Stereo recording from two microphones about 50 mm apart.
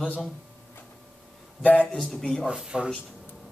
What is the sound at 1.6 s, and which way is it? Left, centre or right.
Speech, left.